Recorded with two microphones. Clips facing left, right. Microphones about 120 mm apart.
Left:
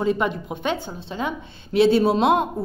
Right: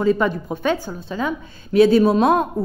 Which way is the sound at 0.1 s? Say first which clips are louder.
Right 4 dB; 45° right (ahead or behind).